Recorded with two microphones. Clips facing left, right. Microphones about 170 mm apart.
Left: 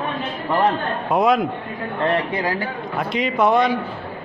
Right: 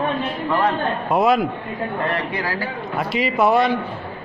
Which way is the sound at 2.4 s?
20° left (ahead or behind).